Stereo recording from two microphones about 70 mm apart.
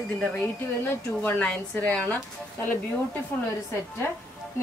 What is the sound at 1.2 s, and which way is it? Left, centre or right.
Speech, left.